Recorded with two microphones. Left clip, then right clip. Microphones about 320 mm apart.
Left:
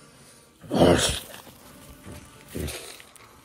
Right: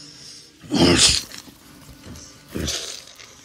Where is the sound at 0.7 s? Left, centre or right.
Centre.